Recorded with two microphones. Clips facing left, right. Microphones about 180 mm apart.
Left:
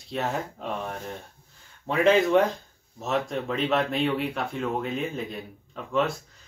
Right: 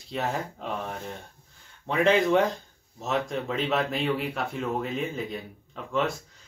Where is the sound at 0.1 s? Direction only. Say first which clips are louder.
Left 1 dB; centre (ahead or behind).